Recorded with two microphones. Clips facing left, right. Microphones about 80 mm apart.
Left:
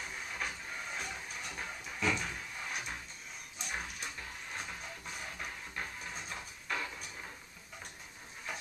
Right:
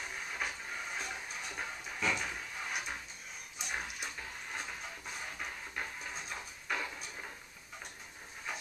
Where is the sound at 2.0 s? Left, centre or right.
Centre.